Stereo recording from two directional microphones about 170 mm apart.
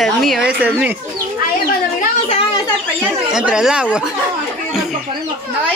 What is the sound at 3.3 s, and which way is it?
Speech, 5° right (ahead or behind).